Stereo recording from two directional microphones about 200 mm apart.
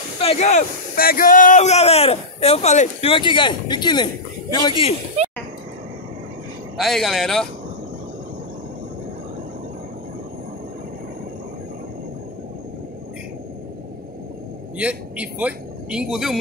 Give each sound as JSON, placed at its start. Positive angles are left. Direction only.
{"t": 0.2, "sound": "speech", "side_deg": 35}
{"t": 6.8, "sound": "speech", "side_deg": 0}
{"t": 14.8, "sound": "a man's voice", "side_deg": -5}